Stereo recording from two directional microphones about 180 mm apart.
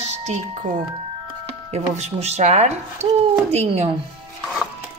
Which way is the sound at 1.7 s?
40° right (ahead or behind).